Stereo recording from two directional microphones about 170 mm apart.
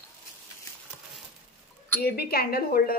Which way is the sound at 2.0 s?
65° left (ahead or behind).